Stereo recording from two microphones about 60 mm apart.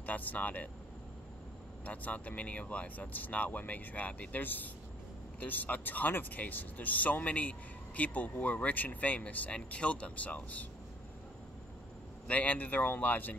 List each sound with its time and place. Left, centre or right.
0.0 s speech: left
1.9 s speech: left
12.3 s speech: left